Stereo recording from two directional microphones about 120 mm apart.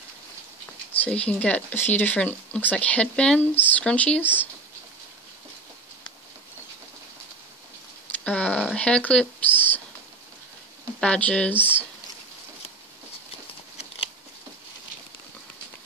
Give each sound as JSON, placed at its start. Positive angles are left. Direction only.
{"t": 0.9, "sound": "speech", "side_deg": 10}
{"t": 8.2, "sound": "speech", "side_deg": 10}
{"t": 11.0, "sound": "speech", "side_deg": 10}